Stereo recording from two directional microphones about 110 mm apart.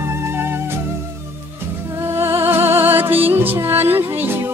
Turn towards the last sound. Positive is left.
turn(degrees=-20)  # may be behind; listen again after turning